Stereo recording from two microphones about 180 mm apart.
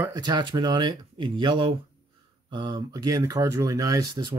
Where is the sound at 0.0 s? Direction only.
20° right (ahead or behind).